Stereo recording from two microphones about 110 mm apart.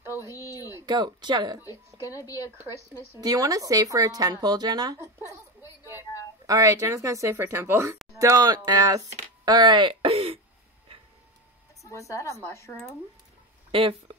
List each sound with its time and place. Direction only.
0.0 s a sound: 20° right (ahead or behind)
0.3 s a sound: 30° left (ahead or behind)
0.8 s speech: 40° right (ahead or behind)
2.2 s speech: 30° left (ahead or behind)
3.1 s speech: 35° right (ahead or behind)
6.4 s speech: 30° right (ahead or behind); by 10.4 s 55° right (ahead or behind)
10.9 s a sound: 55° right (ahead or behind)
11.8 s a woman's voice: 30° left (ahead or behind)
13.7 s speech: 55° right (ahead or behind)